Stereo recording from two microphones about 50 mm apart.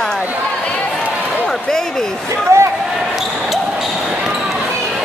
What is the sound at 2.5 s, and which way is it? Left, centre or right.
Speech, right.